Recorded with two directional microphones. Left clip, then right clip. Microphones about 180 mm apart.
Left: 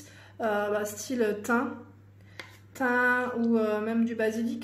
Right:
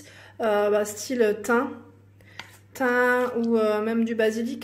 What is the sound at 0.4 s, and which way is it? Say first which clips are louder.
Speech: right 6 dB; 30° right (ahead or behind).